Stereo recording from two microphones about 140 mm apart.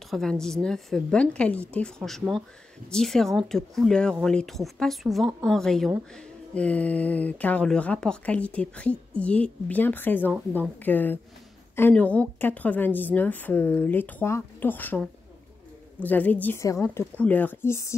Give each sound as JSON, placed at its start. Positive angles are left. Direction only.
{"t": 0.1, "sound": "speech", "side_deg": 5}
{"t": 16.0, "sound": "speech", "side_deg": 10}